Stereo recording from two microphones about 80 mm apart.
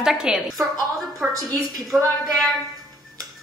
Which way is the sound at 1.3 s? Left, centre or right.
Right.